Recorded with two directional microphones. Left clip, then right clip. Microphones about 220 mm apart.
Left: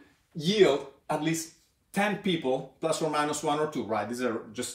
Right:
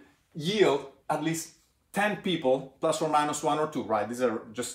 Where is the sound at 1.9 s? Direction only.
20° right (ahead or behind).